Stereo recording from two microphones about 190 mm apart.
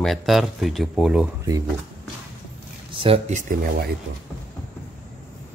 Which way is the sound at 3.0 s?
35° right (ahead or behind).